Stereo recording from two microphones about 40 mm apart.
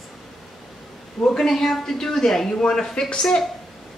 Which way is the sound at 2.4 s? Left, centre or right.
Left.